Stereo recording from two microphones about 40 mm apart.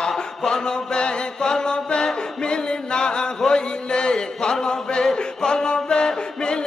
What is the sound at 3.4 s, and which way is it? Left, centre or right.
Chant, left.